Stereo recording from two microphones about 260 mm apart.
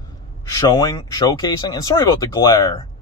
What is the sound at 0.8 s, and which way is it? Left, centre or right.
Speech, centre.